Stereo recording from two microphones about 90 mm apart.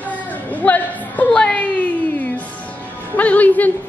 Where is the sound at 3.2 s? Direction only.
15° left (ahead or behind).